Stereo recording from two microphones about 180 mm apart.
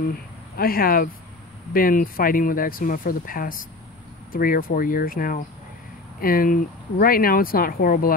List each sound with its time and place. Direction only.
0.1 s speech: 55° left (ahead or behind)